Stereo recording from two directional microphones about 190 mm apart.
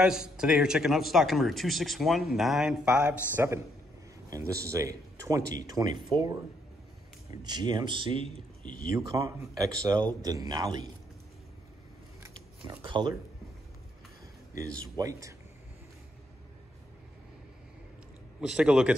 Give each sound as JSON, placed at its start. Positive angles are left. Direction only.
{"t": 0.0, "sound": "a man's voice", "side_deg": -5}
{"t": 7.4, "sound": "speech", "side_deg": -20}
{"t": 8.6, "sound": "speech", "side_deg": 45}
{"t": 8.9, "sound": "speech", "side_deg": -15}
{"t": 12.2, "sound": "shuffling cards", "side_deg": -20}
{"t": 15.0, "sound": "speech", "side_deg": -15}
{"t": 18.4, "sound": "speech", "side_deg": -5}